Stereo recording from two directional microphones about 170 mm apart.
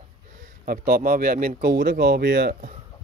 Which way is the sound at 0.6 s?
60° right (ahead or behind).